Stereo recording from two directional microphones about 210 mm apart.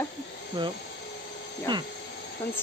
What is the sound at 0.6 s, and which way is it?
Speech, 20° right (ahead or behind).